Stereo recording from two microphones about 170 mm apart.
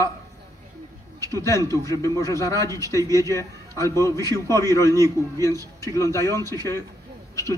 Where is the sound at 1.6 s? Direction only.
20° right (ahead or behind).